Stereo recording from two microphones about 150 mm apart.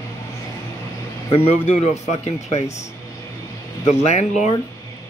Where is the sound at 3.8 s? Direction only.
50° left (ahead or behind).